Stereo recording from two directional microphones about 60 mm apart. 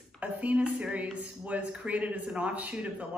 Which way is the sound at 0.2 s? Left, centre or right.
Right.